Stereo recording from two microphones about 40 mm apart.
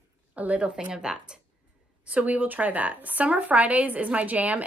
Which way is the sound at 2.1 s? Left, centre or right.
Right.